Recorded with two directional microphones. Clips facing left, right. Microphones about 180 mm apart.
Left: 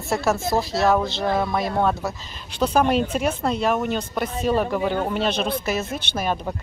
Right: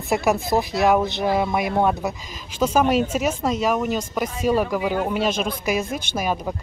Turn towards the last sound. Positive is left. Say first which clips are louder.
# right 1 dB
turn(degrees=-10)  # may be behind; listen again after turning